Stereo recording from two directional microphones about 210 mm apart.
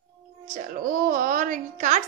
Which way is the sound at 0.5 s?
40° right (ahead or behind).